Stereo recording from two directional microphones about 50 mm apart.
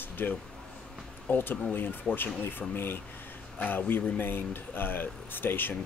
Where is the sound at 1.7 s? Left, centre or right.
Left.